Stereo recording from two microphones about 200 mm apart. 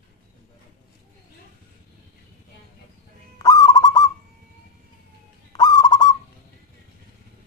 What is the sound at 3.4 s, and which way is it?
Owl, 20° left (ahead or behind).